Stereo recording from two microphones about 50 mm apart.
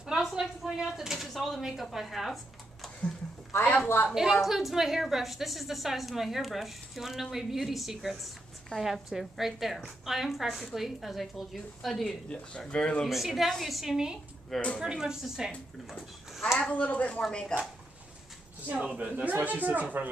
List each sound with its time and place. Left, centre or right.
0.0 s a sound: centre
1.6 s speech: centre
4.1 s a woman's voice: centre
12.3 s speech: left
13.0 s a woman's voice: centre
16.5 s speech: left
17.3 s speech: centre
18.8 s speech: right
19.1 s speech: right